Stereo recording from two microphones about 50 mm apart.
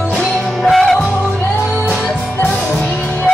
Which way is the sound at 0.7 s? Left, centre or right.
Centre.